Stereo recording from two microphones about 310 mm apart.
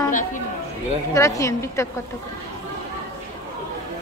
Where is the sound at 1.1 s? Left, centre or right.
Centre.